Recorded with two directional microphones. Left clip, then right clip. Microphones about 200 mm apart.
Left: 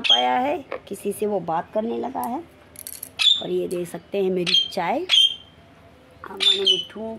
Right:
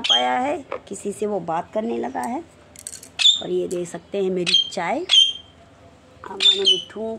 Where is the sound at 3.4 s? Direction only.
10° left (ahead or behind).